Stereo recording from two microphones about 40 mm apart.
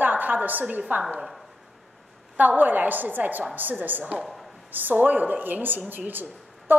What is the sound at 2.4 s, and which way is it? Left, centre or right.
A woman's voice, right.